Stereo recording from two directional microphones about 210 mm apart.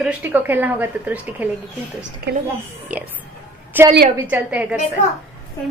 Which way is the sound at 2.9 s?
5° right (ahead or behind).